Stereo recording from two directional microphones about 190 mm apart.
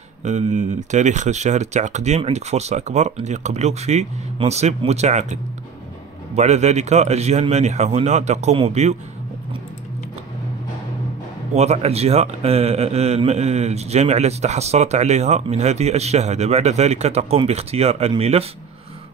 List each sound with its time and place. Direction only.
0.2 s a man's voice: 35° right (ahead or behind)
11.5 s a man's voice: 35° right (ahead or behind)